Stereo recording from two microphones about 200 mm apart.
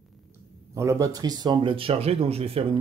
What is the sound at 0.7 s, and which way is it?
Speech, 15° right (ahead or behind).